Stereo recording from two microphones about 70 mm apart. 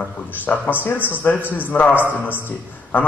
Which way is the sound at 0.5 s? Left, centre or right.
Left.